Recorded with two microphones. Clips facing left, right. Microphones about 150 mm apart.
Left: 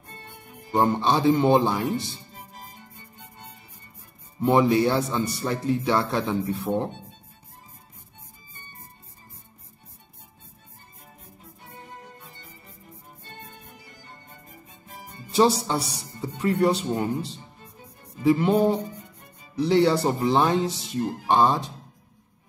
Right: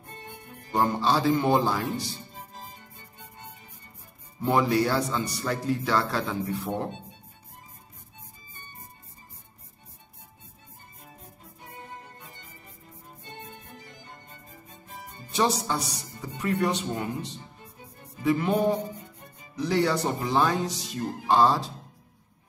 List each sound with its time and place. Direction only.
0.7 s speech: 20° left (ahead or behind)
4.4 s speech: 25° left (ahead or behind)
15.3 s speech: 25° left (ahead or behind)